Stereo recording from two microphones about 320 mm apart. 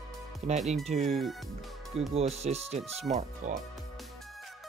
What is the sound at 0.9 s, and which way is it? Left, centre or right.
Speech, centre.